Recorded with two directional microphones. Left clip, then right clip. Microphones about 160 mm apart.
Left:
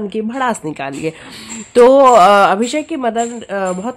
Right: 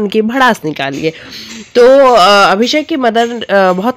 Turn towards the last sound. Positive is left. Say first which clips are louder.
# right 10 dB
turn(degrees=-35)  # may be behind; listen again after turning